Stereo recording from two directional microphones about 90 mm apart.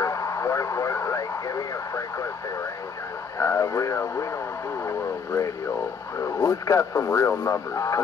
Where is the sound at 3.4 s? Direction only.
35° left (ahead or behind).